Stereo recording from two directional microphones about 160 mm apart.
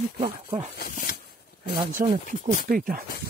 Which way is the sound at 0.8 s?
65° left (ahead or behind).